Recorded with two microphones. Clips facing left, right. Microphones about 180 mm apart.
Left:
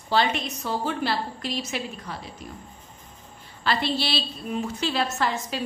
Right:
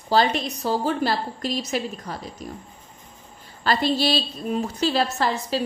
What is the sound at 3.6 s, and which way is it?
A woman's voice, 40° right (ahead or behind).